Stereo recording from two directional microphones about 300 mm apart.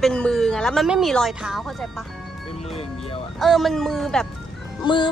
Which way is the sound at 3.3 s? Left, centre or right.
Centre.